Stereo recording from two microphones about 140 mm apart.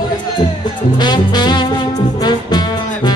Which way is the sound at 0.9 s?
30° left (ahead or behind).